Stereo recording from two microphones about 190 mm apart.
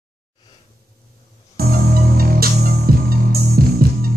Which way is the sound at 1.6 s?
50° right (ahead or behind).